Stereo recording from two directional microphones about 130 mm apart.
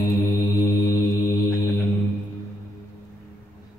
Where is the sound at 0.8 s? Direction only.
90° left.